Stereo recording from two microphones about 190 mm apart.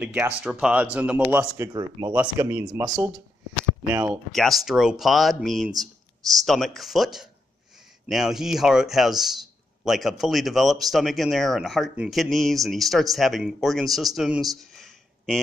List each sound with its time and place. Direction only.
0.0 s speech: 5° right (ahead or behind); by 2.1 s 20° right (ahead or behind)
2.1 s speech: 10° right (ahead or behind)
2.6 s speech: 20° right (ahead or behind)
2.9 s speech: centre (ahead or behind)
14.7 s a sound: centre (ahead or behind)